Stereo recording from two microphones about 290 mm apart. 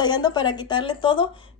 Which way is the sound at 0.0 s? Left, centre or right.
Centre.